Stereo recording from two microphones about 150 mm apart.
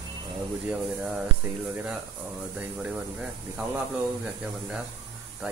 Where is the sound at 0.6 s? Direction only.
5° right (ahead or behind).